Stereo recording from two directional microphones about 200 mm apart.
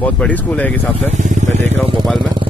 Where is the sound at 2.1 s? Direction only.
25° right (ahead or behind).